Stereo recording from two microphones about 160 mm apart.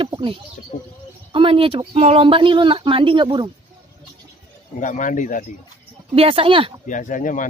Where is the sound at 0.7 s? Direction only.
55° left (ahead or behind).